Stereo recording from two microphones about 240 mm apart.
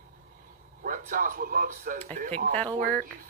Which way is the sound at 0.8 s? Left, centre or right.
Right.